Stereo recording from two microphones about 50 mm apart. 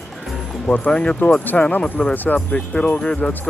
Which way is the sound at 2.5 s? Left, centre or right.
Left.